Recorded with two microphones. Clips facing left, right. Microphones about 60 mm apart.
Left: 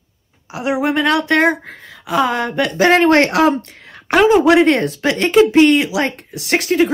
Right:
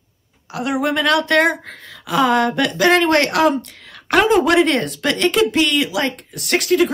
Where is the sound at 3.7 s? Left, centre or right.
Centre.